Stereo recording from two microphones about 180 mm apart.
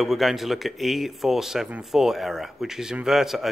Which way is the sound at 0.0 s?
Centre (ahead or behind).